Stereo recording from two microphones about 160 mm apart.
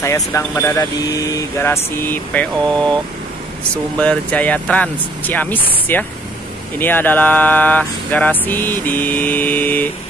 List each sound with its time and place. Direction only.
0.0 s speech: 15° left (ahead or behind)